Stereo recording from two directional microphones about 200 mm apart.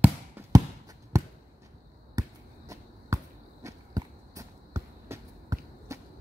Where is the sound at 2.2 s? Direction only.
15° right (ahead or behind).